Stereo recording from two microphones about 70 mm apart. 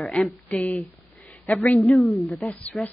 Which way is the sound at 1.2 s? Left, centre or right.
Left.